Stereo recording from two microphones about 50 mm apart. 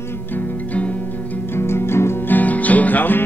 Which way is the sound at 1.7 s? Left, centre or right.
Left.